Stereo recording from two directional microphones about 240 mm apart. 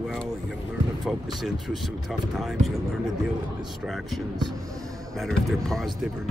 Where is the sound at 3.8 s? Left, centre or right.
Centre.